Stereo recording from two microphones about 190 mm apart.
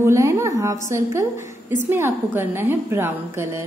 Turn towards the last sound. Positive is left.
turn(degrees=-15)  # may be behind; listen again after turning